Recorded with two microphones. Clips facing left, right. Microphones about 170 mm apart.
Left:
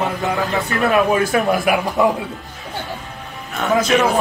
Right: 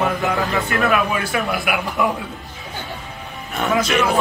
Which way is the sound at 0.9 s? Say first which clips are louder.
Left 4 dB; 40° left (ahead or behind).